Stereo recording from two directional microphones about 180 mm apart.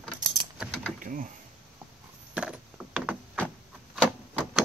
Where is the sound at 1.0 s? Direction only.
50° right (ahead or behind).